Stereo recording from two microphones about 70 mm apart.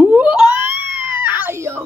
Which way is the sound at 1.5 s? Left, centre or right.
Right.